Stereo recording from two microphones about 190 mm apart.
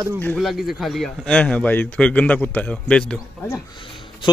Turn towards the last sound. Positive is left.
turn(degrees=25)  # may be behind; listen again after turning